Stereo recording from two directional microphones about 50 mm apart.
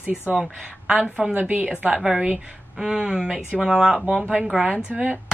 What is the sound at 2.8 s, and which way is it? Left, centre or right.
Speech, centre.